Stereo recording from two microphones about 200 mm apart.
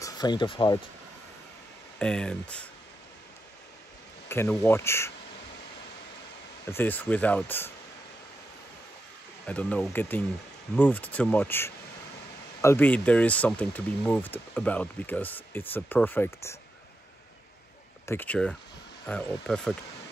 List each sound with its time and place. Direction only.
0.0 s speech: 20° left (ahead or behind)
2.0 s speech: 5° left (ahead or behind)
4.3 s speech: 10° left (ahead or behind)
6.7 s speech: 10° left (ahead or behind)
9.5 s speech: 5° left (ahead or behind)
18.0 s speech: 10° left (ahead or behind)